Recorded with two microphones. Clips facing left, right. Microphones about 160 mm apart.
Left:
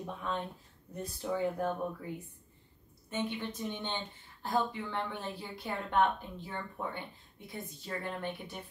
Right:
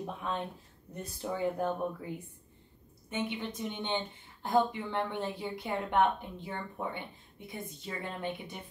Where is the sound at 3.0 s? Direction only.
15° right (ahead or behind).